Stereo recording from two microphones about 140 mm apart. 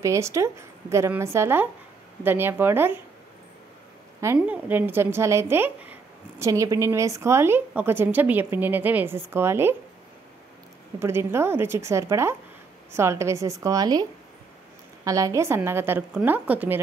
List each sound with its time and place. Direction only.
0.0 s a woman's voice: 20° right (ahead or behind)
4.2 s a woman's voice: 15° right (ahead or behind)
11.0 s a woman's voice: 15° right (ahead or behind)
15.0 s a woman's voice: 25° right (ahead or behind)